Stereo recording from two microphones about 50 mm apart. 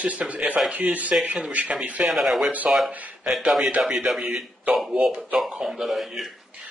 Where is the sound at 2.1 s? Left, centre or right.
Centre.